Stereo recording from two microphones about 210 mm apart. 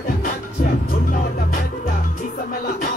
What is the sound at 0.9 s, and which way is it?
Music, 40° left (ahead or behind).